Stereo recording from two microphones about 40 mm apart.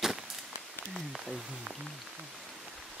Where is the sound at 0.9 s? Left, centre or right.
Centre.